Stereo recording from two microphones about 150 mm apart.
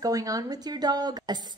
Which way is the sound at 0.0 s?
25° right (ahead or behind).